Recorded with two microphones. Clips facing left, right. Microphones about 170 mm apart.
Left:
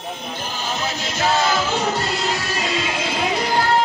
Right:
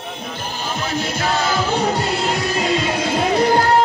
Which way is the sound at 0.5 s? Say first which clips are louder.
Right 4 dB; 55° right (ahead or behind).